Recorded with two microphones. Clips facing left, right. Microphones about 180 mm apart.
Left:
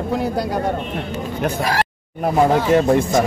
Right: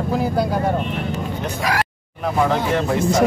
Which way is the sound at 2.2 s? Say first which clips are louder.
Left 3 dB; 45° left (ahead or behind).